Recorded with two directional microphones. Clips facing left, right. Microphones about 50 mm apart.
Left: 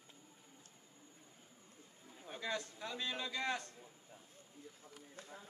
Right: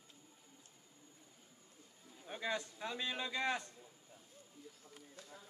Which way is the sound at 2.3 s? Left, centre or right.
Centre.